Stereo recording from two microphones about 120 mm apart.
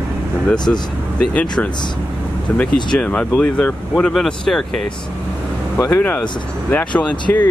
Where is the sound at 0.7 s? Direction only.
10° left (ahead or behind).